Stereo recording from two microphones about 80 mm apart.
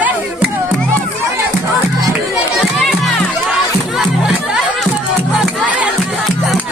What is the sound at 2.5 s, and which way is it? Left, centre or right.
Crowd, centre.